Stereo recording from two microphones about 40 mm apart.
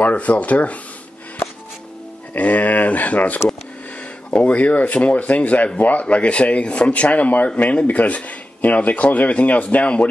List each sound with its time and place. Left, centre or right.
0.0 s speech: left
2.3 s speech: left
4.3 s speech: left